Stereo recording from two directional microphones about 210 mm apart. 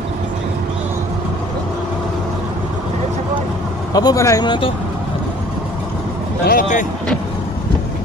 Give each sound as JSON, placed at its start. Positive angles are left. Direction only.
{"t": 3.9, "sound": "speech", "side_deg": 15}
{"t": 6.4, "sound": "speech", "side_deg": 40}